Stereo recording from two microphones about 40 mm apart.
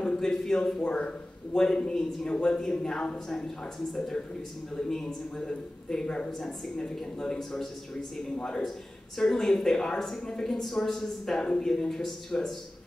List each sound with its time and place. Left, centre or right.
0.0 s a sound: centre
0.3 s a woman's voice: centre
0.7 s a woman's voice: left
4.8 s a woman's voice: centre
9.2 s a woman's voice: centre